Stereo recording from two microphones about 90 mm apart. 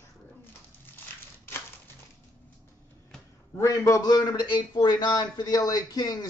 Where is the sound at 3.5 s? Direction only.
35° left (ahead or behind).